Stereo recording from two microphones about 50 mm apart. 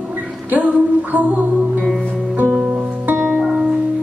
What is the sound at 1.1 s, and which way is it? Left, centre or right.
Music, right.